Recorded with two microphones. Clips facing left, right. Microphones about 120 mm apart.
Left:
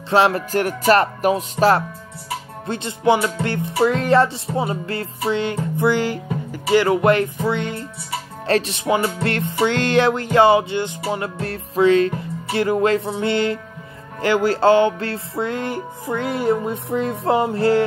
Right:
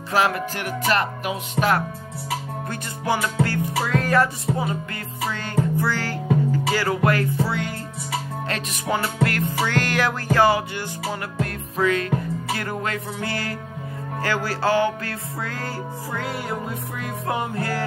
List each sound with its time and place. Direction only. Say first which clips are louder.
0.1 s music: left 5 dB; 30° left (ahead or behind)
0.5 s music: left 7 dB; 40° left (ahead or behind)
2.7 s music: left 8 dB; 25° left (ahead or behind)
5.8 s music: left 6 dB; 20° left (ahead or behind)
8.5 s music: left 9 dB; 30° left (ahead or behind)
8.8 s music: left 3 dB; 20° left (ahead or behind)